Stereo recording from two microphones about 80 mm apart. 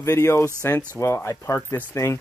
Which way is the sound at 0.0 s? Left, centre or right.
Left.